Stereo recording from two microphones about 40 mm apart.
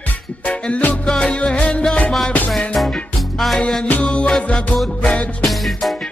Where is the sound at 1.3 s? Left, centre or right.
Left.